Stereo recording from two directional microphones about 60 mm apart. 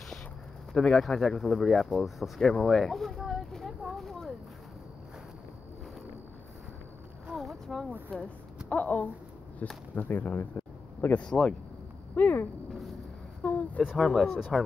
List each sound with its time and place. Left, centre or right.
0.7 s speech: centre
1.0 s speech: centre
2.4 s a sound: centre
7.3 s a sound: centre
8.6 s speech: left
11.1 s speech: centre
12.2 s speech: left
13.4 s a sound: left
13.9 s speech: centre
14.2 s speech: centre